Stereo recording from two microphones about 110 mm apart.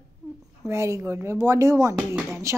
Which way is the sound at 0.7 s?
25° right (ahead or behind).